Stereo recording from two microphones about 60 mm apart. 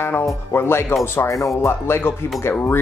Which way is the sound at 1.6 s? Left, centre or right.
Left.